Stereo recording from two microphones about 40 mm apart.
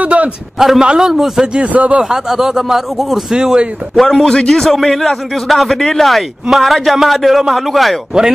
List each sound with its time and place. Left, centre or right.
0.0 s a sound: right
0.7 s speech: centre
1.7 s speech: right
2.0 s speech: centre
3.3 s speech: centre
3.9 s a man's voice: centre
4.3 s a man's voice: centre
5.8 s speech: centre
6.5 s a man's voice: centre